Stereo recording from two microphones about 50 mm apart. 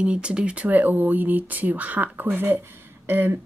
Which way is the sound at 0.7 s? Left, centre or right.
Right.